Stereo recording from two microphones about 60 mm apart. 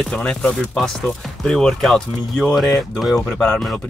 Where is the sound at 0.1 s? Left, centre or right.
Centre.